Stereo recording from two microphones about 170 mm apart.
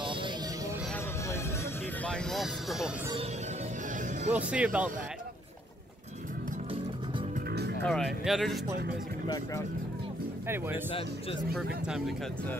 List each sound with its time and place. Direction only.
0.0 s a sound: 30° right (ahead or behind)
2.0 s speech: 5° left (ahead or behind)
4.4 s speech: 5° right (ahead or behind)
7.8 s speech: 5° left (ahead or behind)
10.9 s speech: 35° left (ahead or behind)
11.5 s speech: 5° right (ahead or behind)